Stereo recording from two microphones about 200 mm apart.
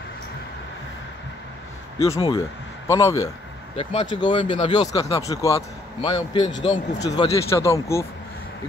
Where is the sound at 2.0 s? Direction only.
30° left (ahead or behind).